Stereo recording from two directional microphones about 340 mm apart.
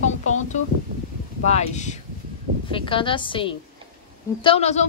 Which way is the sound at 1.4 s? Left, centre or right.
Centre.